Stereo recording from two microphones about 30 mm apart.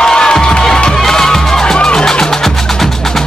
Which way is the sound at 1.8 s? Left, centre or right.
Left.